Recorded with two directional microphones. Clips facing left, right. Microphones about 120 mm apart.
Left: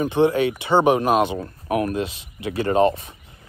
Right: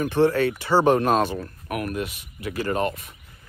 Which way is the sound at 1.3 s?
25° left (ahead or behind).